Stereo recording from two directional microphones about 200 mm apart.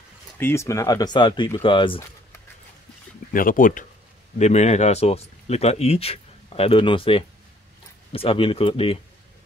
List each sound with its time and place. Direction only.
0.4 s speech: 10° left (ahead or behind)
3.3 s speech: 45° left (ahead or behind); by 9.0 s 25° left (ahead or behind)